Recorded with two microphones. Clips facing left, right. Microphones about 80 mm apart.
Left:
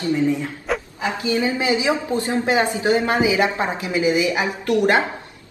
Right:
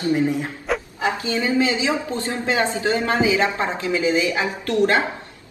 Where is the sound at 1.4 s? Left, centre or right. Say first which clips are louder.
Right 2 dB; left.